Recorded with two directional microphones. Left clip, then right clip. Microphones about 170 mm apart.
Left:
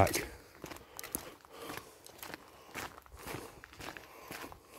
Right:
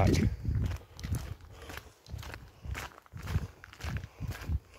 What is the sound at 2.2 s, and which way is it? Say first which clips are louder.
Walk: even; 5° left (ahead or behind).